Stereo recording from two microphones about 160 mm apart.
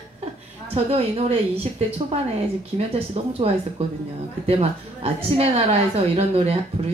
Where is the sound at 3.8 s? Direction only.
40° right (ahead or behind).